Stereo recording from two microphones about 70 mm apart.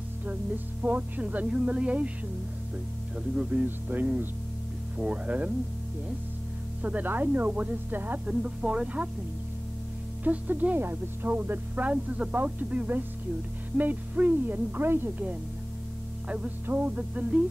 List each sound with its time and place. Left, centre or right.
0.8 s speech: right
3.6 s speech: right
6.8 s speech: right
8.3 s speech: centre
10.2 s speech: right
16.3 s music: centre
16.6 s speech: right